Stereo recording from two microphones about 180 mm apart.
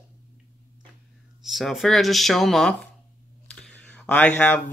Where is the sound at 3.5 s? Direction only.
5° left (ahead or behind).